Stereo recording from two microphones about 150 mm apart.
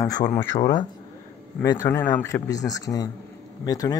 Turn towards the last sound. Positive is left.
turn(degrees=25)  # may be behind; listen again after turning